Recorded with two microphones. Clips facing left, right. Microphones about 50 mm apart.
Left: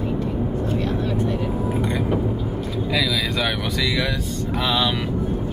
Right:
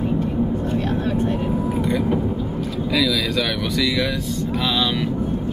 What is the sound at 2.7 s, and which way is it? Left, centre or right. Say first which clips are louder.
Speech: right 2 dB; centre.